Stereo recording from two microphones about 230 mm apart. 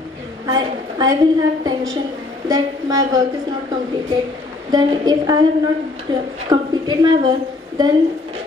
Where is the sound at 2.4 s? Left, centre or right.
Centre.